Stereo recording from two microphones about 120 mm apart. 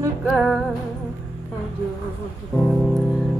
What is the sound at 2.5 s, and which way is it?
Music, 10° left (ahead or behind).